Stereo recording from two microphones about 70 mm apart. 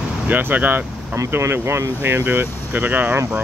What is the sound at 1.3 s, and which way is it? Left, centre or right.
Speech, right.